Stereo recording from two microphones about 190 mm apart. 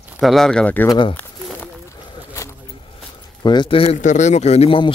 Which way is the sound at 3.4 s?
25° left (ahead or behind).